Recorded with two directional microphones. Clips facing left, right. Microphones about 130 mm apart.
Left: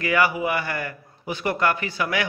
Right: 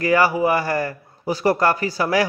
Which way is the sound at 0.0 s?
40° right (ahead or behind).